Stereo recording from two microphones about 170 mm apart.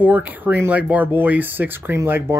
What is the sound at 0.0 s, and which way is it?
Speech, 10° right (ahead or behind).